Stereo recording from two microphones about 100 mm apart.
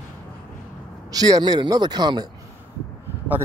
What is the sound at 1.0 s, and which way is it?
Speech, 40° right (ahead or behind).